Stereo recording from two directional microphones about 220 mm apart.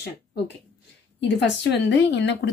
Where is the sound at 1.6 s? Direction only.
50° left (ahead or behind).